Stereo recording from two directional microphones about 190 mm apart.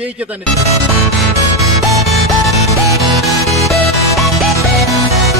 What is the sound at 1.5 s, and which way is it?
Music, 15° right (ahead or behind).